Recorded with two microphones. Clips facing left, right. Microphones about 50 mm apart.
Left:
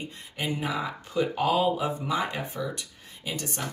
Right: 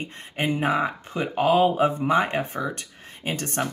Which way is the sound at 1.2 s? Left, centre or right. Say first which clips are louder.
Right 5 dB; right.